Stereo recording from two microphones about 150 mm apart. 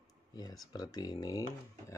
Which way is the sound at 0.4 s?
25° left (ahead or behind).